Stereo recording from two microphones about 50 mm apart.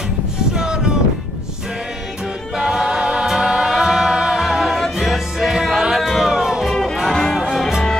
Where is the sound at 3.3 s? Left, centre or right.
Centre.